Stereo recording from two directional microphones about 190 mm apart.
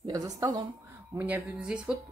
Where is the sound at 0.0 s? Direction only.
20° right (ahead or behind).